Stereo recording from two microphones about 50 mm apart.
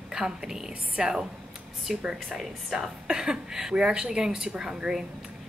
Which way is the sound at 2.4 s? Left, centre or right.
Centre.